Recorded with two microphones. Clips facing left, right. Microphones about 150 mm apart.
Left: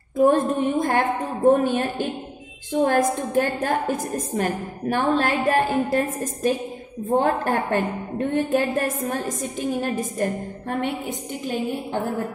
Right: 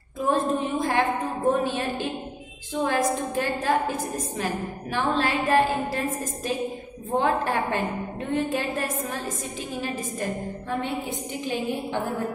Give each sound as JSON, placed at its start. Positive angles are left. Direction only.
{"t": 0.2, "sound": "a woman's voice", "side_deg": 50}